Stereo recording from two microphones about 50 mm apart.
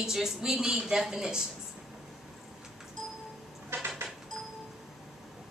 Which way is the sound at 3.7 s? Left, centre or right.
Right.